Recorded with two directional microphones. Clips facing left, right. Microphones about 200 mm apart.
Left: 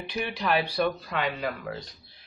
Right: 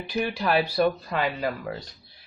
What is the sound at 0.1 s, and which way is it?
Speech, 40° right (ahead or behind).